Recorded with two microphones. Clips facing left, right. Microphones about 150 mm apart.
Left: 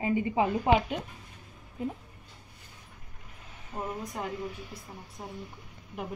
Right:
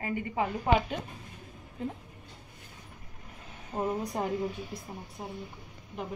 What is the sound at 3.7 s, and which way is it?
Speech, 30° right (ahead or behind).